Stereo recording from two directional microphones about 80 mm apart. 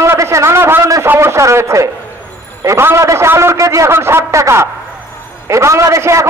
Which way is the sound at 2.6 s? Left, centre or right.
Right.